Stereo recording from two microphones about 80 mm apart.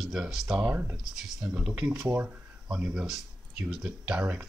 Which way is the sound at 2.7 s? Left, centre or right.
Centre.